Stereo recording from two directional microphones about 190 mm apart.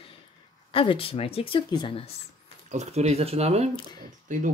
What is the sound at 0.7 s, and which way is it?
A woman's voice, 30° left (ahead or behind).